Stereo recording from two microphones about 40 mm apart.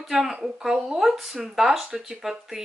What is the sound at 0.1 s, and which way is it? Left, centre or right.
Speech, centre.